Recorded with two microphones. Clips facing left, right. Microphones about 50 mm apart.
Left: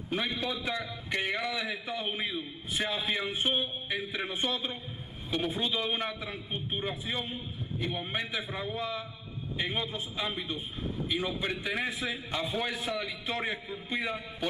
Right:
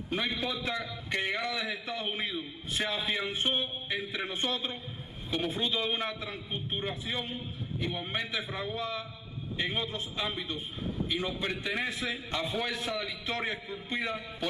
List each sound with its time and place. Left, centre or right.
0.1 s a man's voice: centre
9.8 s a man's voice: centre